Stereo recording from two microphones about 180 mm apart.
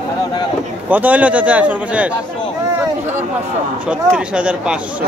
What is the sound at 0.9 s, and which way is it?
A man's voice, 10° right (ahead or behind).